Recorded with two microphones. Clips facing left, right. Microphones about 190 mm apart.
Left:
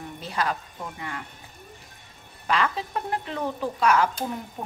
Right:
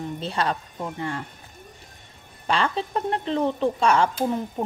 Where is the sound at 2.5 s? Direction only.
30° right (ahead or behind).